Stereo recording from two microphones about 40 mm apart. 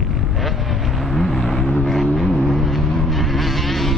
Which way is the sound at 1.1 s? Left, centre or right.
Centre.